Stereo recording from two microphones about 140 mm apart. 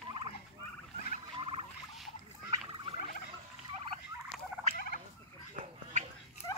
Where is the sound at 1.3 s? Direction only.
40° right (ahead or behind).